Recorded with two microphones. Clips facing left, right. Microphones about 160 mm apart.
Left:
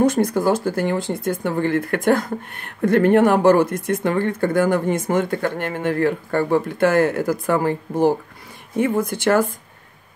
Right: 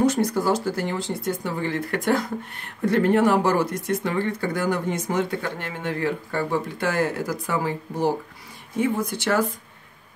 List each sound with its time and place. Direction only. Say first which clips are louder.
0.0 s speech: left 4 dB; 50° left (ahead or behind)